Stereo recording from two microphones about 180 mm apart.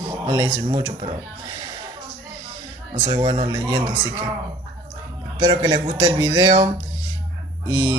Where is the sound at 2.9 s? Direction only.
25° right (ahead or behind).